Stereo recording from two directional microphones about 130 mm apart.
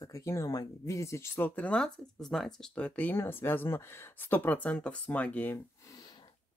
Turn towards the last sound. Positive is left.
turn(degrees=15)  # may be behind; listen again after turning